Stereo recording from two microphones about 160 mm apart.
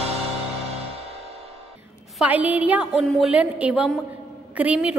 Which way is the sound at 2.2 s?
10° right (ahead or behind).